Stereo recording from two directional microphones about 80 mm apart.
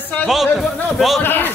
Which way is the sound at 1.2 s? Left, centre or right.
Left.